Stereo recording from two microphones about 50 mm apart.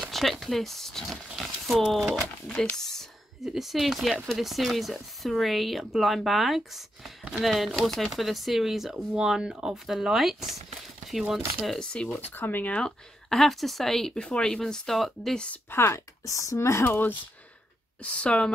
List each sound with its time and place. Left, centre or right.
0.1 s speech: centre
2.7 s a sound: centre
3.3 s speech: centre
9.1 s speech: centre
11.8 s speech: centre
12.2 s speech: left
12.7 s speech: centre
13.4 s speech: centre
15.3 s speech: left
15.7 s speech: left
16.8 s speech: left
18.0 s speech: left